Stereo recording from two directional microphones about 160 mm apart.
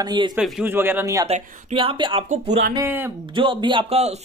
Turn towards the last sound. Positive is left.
turn(degrees=-40)  # may be behind; listen again after turning